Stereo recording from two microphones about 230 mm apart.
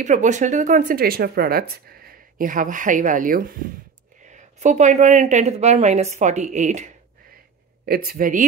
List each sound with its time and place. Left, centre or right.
0.0 s speech: right